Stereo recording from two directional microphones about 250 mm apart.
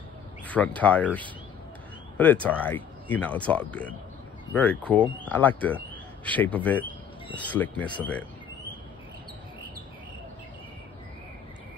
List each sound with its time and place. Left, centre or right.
0.5 s speech: centre